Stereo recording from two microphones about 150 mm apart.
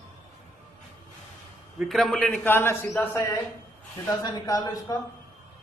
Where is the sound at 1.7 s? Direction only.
Centre (ahead or behind); by 5.0 s 25° left (ahead or behind).